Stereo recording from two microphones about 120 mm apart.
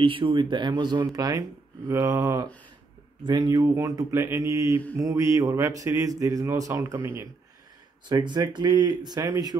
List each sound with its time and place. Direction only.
0.0 s speech: 45° right (ahead or behind); by 7.0 s 30° right (ahead or behind)
7.0 s speech: 15° right (ahead or behind)
8.1 s speech: 40° right (ahead or behind)